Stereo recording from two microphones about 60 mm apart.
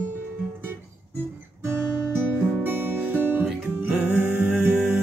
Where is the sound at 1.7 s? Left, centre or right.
Right.